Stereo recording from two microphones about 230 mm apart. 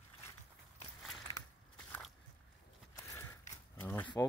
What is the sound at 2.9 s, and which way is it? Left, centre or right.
Biting, centre.